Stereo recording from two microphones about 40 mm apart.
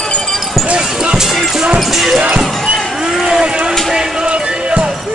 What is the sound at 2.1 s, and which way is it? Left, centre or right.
Music, right.